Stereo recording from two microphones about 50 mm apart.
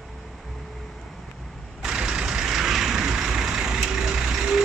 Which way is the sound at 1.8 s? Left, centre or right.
Centre.